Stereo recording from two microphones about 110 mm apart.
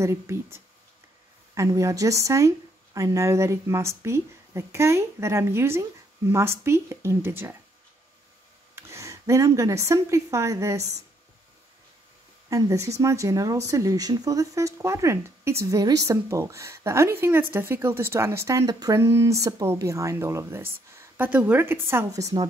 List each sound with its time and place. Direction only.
0.0 s speech: 25° right (ahead or behind)
8.7 s speech: 25° right (ahead or behind)
12.4 s speech: 30° right (ahead or behind)
22.1 s a woman's voice: 35° right (ahead or behind)